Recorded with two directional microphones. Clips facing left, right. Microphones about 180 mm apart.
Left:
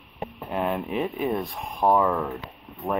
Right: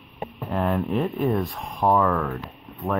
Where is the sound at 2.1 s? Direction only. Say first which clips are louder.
Right 1 dB; 15° left (ahead or behind).